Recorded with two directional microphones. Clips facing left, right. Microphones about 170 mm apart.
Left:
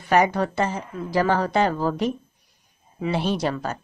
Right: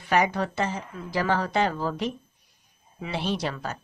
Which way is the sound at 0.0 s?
45° left (ahead or behind).